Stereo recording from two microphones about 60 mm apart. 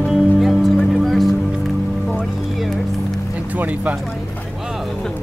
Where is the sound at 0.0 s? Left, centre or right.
Centre.